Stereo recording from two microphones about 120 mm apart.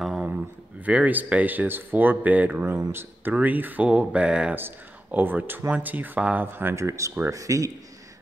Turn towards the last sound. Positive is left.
turn(degrees=-30)  # may be behind; listen again after turning